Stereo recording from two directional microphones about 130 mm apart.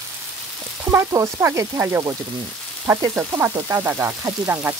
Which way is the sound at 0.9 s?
20° right (ahead or behind).